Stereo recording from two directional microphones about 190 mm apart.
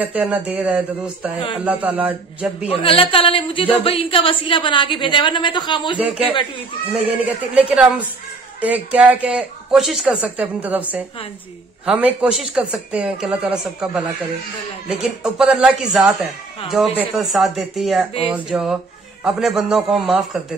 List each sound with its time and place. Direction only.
0.0 s a woman's voice: 10° right (ahead or behind)
2.7 s a woman's voice: 30° left (ahead or behind)
5.9 s a woman's voice: 5° right (ahead or behind)